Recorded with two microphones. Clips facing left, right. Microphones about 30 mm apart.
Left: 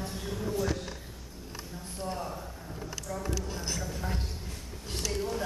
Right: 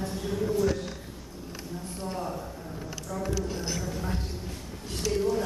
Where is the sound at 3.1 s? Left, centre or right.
Centre.